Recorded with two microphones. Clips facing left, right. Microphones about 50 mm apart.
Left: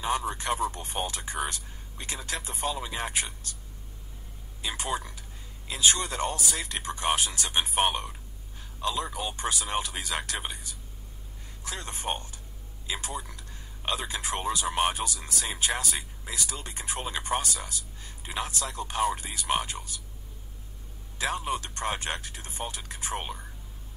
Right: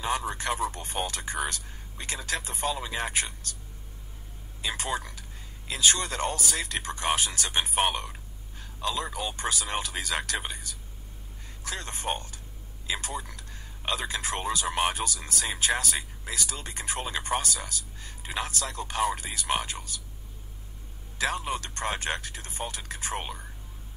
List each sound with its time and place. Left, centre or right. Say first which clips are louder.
0.0 s speech: even; right
4.6 s speech: right 1 dB; right
8.5 s a sound: left 1 dB; right
9.4 s a man's voice: left 1 dB; right
21.5 s speech: even; right